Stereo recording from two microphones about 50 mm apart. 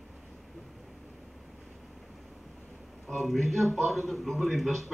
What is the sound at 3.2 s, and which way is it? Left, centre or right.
Speech, centre.